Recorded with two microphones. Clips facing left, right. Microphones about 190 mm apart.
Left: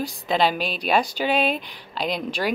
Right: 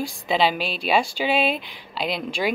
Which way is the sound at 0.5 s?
45° left (ahead or behind).